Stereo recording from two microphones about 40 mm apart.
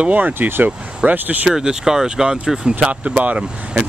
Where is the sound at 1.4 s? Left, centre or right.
Centre.